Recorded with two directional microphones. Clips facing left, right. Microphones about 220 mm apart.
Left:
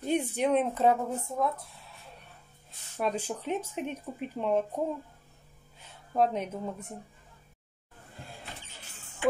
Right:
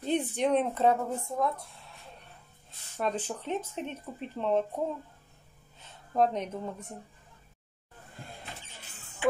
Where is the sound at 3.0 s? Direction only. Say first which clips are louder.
Left 1 dB; 10° left (ahead or behind).